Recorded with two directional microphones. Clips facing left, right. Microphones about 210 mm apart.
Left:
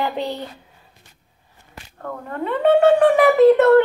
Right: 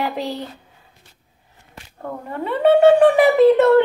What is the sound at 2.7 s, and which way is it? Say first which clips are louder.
Speech: right 2 dB; 15° right (ahead or behind).